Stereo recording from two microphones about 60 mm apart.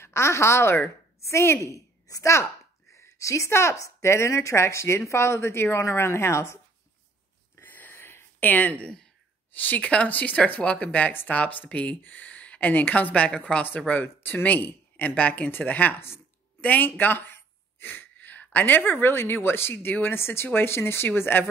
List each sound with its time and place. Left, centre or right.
0.0 s a woman's voice: left
2.9 s a sound: left
3.7 s speech: left
7.5 s a sound: left
8.5 s speech: left
8.8 s speech: centre
9.6 s speech: left
16.6 s a sound: left
18.1 s speech: left